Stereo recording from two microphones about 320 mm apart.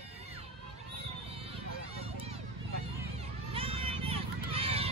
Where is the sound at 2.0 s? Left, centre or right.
Centre.